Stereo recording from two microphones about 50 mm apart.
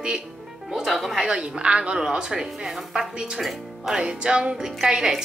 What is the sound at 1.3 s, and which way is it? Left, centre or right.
A woman's voice, right.